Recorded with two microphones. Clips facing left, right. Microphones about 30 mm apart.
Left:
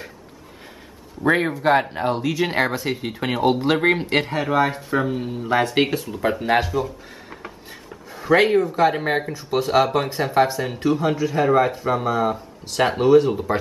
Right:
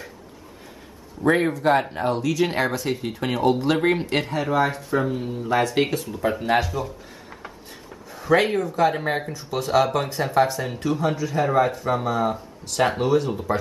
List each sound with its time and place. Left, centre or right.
1.2 s speech: centre
5.0 s speech: centre
9.8 s speech: centre